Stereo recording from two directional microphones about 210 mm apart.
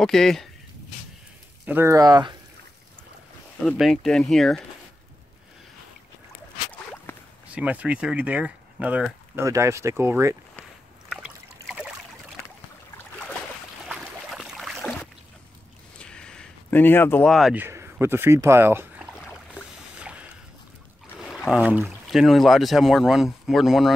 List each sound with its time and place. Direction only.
0.0 s speech: centre (ahead or behind)
1.7 s speech: 15° right (ahead or behind)
3.6 s speech: centre (ahead or behind)
7.1 s a sound: 10° left (ahead or behind)
7.5 s speech: 5° right (ahead or behind)
11.1 s trickle: centre (ahead or behind)
13.8 s boat: centre (ahead or behind)
16.0 s a sound: 5° left (ahead or behind)
17.6 s speech: 10° right (ahead or behind)
19.5 s boat: 5° right (ahead or behind)
21.2 s speech: centre (ahead or behind)